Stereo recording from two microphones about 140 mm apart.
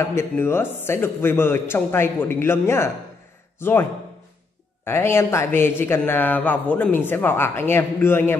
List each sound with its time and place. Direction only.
0.4 s speech: 15° left (ahead or behind)
4.8 s speech: 20° left (ahead or behind)